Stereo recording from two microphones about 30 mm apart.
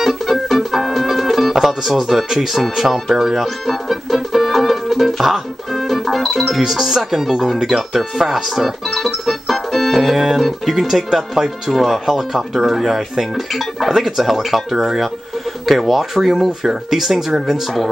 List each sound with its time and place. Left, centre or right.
0.0 s music: centre
1.5 s speech: centre
3.9 s music: centre
5.7 s speech: centre
11.7 s speech: centre